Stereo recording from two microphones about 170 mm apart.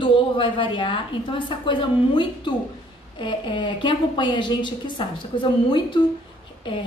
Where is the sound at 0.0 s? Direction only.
30° left (ahead or behind).